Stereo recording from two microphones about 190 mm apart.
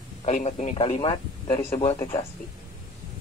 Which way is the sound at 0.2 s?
35° left (ahead or behind).